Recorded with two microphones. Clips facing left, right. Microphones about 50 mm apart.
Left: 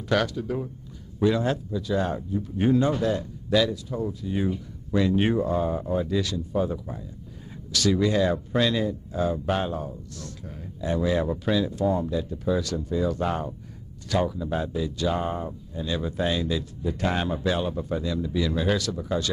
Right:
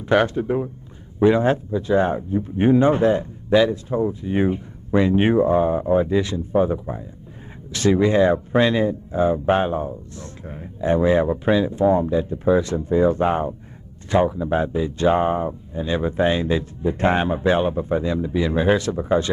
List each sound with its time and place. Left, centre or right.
0.0 s speech: right